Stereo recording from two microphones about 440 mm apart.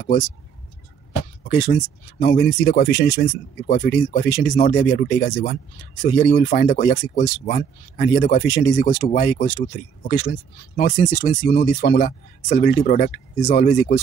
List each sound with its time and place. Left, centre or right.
0.0 s speech: centre
1.5 s speech: left